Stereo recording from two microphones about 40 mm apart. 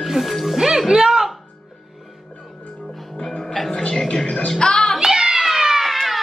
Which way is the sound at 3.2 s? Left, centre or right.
Centre.